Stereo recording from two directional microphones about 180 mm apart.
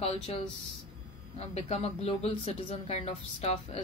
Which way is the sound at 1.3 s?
35° left (ahead or behind).